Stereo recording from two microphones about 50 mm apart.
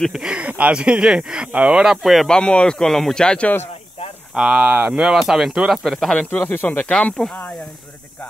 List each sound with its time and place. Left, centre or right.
0.1 s speech: centre
0.4 s speech: right
0.7 s speech: centre
1.5 s speech: right
2.2 s speech: centre
3.3 s speech: left
4.3 s speech: centre
5.9 s speech: centre
6.3 s speech: left
6.9 s speech: left